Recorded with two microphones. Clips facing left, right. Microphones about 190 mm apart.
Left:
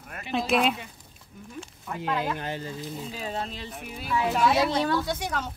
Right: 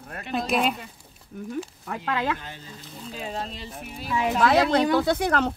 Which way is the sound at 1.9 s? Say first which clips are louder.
Even; 80° right.